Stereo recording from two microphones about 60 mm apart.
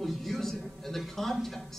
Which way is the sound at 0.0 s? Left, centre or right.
Centre.